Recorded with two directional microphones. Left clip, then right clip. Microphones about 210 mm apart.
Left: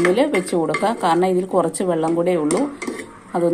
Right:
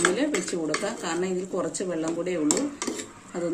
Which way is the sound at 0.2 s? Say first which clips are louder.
Left 9 dB; 25° left (ahead or behind).